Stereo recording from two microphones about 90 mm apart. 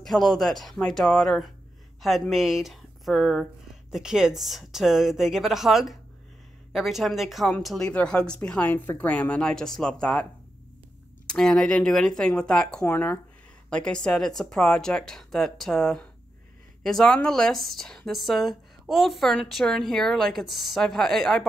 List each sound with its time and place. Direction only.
0.0 s a woman's voice: 5° left (ahead or behind)
11.2 s a woman's voice: 10° left (ahead or behind)
12.8 s speech: 25° left (ahead or behind)
13.7 s speech: 10° left (ahead or behind)